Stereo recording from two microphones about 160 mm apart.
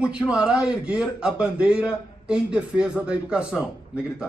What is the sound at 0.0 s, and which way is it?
A man's voice, 5° right (ahead or behind).